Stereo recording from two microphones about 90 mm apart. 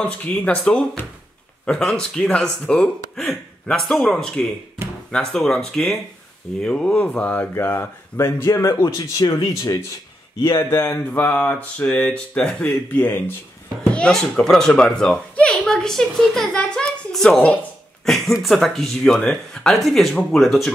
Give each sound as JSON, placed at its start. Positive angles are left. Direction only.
{"t": 0.0, "sound": "speech", "side_deg": 15}
{"t": 9.2, "sound": "speech", "side_deg": 50}
{"t": 10.4, "sound": "speech", "side_deg": 25}
{"t": 11.1, "sound": "speech", "side_deg": 15}